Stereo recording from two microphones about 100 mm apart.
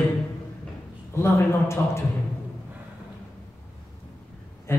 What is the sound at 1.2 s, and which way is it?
Speech, 25° left (ahead or behind).